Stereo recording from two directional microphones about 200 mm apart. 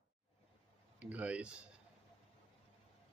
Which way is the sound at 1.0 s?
5° right (ahead or behind).